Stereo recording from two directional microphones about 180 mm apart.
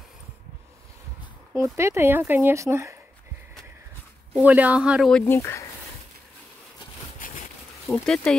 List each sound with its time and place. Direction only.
1.5 s speech: 15° right (ahead or behind)
4.3 s speech: 10° right (ahead or behind)
5.1 s speech: 15° left (ahead or behind)
7.2 s a sound: 50° left (ahead or behind)
7.9 s speech: 5° left (ahead or behind)